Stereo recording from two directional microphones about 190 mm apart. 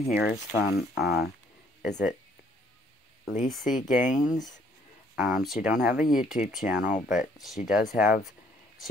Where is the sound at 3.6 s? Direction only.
45° left (ahead or behind).